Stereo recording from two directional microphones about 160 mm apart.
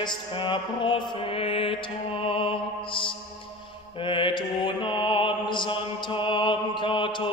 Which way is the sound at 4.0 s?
30° left (ahead or behind).